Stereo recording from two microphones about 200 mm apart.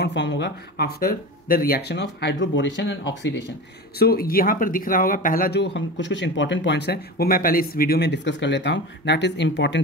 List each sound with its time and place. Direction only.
0.0 s speech: 60° left (ahead or behind)
4.0 s speech: 50° left (ahead or behind)